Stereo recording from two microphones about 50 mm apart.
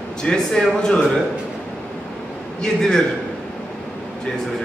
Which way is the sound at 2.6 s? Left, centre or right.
Centre.